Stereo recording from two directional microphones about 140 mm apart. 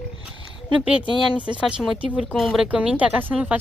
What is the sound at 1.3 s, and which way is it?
Speech, 5° right (ahead or behind).